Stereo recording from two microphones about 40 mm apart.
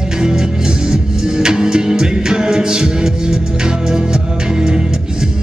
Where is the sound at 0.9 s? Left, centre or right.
Centre.